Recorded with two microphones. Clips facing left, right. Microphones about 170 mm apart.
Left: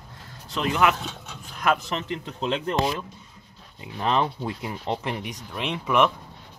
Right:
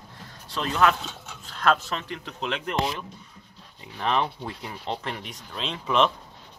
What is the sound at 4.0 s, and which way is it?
Speech, 20° left (ahead or behind).